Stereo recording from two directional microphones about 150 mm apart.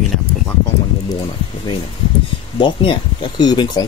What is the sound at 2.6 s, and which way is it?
Speech, 35° left (ahead or behind).